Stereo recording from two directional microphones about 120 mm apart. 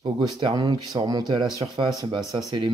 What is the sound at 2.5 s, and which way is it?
Speech, 40° right (ahead or behind).